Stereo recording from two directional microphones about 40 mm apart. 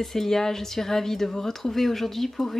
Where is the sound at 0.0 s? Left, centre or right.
Centre.